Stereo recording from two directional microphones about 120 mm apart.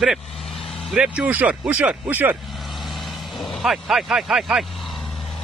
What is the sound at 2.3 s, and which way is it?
Vehicle, centre (ahead or behind).